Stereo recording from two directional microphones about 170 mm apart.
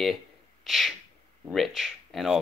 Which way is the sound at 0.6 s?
Centre (ahead or behind).